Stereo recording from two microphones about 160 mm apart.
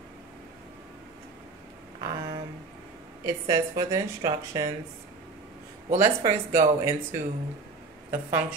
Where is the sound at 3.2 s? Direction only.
20° right (ahead or behind).